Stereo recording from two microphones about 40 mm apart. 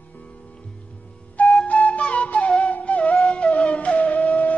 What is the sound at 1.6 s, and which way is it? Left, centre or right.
Music, left.